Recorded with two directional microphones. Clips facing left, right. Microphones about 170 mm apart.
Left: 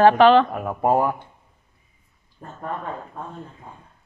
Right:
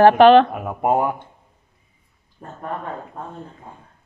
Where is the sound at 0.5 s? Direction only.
15° right (ahead or behind).